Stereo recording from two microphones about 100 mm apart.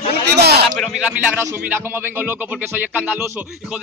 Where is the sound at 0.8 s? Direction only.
5° right (ahead or behind).